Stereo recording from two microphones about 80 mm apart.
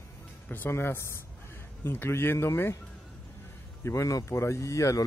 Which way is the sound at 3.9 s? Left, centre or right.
Left.